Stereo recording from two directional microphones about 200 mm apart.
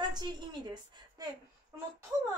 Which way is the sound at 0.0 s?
20° right (ahead or behind).